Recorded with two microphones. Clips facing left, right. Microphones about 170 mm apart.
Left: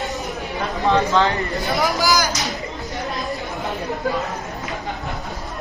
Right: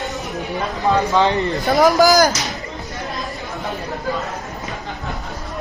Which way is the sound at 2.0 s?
45° right (ahead or behind).